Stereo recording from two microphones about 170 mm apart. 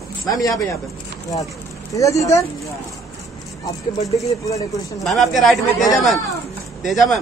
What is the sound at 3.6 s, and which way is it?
Speech, 20° left (ahead or behind).